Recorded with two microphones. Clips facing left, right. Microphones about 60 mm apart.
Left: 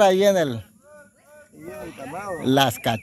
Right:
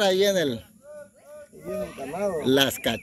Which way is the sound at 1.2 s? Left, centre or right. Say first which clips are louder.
Even; centre.